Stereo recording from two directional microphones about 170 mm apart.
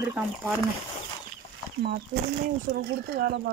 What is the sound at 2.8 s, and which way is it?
Speech, 60° right (ahead or behind).